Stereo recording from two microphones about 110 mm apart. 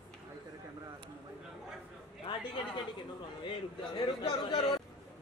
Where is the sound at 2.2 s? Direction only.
45° left (ahead or behind).